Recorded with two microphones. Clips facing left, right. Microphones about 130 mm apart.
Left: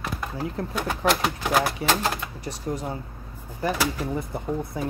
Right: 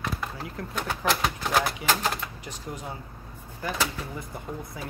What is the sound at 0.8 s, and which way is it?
Speech, 10° left (ahead or behind).